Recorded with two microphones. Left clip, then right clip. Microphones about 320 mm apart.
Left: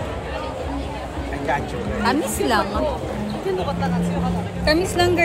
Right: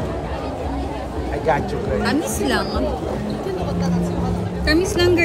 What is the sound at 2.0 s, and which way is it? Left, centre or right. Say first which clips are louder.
Speech: left 5 dB; centre.